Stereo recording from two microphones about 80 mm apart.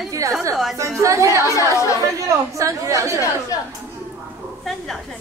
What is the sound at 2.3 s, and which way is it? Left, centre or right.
Speech, right.